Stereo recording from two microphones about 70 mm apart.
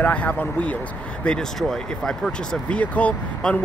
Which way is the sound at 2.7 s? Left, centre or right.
Left.